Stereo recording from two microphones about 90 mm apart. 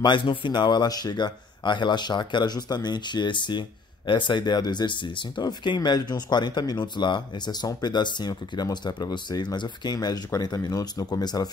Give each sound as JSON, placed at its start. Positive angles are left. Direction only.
{"t": 0.0, "sound": "speech", "side_deg": 65}